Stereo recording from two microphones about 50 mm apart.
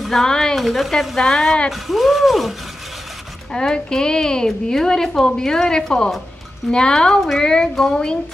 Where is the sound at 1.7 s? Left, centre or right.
Centre.